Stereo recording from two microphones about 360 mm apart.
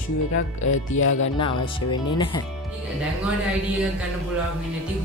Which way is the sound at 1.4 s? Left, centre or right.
Centre.